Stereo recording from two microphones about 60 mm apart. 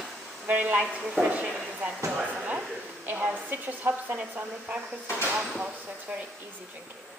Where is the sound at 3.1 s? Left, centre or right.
Right.